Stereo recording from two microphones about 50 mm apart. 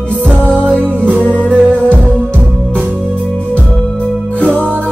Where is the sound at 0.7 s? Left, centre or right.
Right.